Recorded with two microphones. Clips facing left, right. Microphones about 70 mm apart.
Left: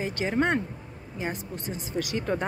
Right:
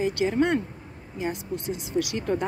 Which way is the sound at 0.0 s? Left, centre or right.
Left.